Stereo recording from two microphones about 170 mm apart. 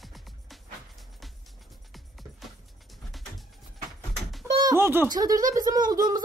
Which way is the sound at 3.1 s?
Centre (ahead or behind).